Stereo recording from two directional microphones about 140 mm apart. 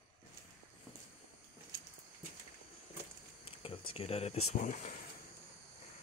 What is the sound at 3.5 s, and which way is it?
Speech, 45° left (ahead or behind).